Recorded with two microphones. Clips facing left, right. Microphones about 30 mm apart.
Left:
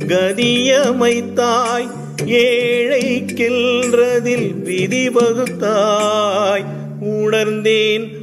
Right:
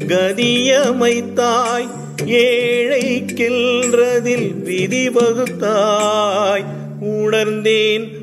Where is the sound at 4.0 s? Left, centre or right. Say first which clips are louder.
Even; centre.